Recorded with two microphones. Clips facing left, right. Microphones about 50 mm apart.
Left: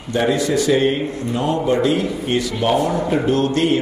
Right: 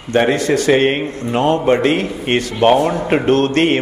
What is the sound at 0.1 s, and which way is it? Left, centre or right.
A man's voice, right.